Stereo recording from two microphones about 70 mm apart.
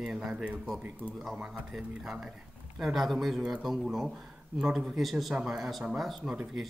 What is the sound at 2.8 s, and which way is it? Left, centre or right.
Speech, centre.